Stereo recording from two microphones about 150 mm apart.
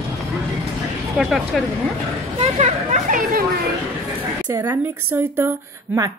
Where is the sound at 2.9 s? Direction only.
60° right (ahead or behind).